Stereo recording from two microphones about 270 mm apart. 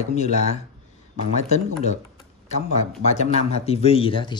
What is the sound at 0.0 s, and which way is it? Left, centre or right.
Speech, left.